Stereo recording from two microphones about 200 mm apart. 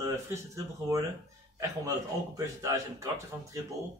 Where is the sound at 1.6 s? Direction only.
15° right (ahead or behind).